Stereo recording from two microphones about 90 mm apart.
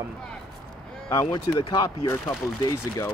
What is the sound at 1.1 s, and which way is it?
Speech, 50° left (ahead or behind).